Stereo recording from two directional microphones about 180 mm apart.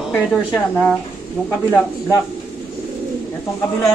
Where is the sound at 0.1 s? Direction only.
5° left (ahead or behind).